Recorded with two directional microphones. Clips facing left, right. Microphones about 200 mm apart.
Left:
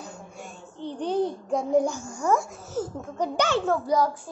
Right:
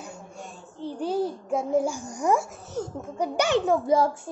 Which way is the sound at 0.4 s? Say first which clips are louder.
Even; centre (ahead or behind).